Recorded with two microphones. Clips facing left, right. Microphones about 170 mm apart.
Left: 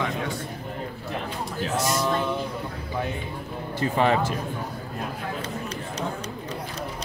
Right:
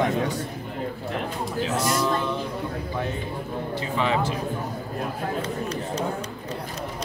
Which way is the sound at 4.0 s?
50° left (ahead or behind).